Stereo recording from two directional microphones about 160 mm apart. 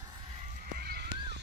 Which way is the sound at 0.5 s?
75° right (ahead or behind).